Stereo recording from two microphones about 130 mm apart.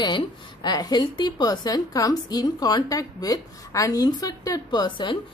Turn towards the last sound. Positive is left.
turn(degrees=35)  # may be behind; listen again after turning